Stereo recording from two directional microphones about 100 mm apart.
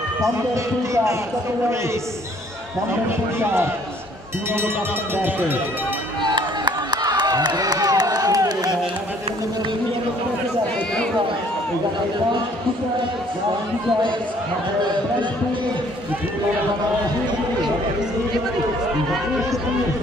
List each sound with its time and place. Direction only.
5.1 s speech: 20° right (ahead or behind)
6.2 s run: 50° right (ahead or behind)